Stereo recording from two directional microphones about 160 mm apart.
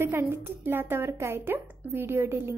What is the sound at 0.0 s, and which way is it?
A woman's voice, 15° right (ahead or behind).